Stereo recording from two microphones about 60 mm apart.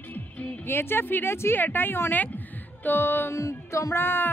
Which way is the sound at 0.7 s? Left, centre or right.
Left.